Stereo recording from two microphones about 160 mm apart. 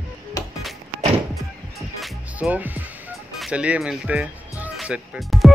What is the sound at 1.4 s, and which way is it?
Music, centre (ahead or behind).